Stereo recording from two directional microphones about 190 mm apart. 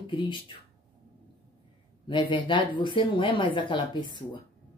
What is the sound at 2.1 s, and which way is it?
Speech, 25° left (ahead or behind).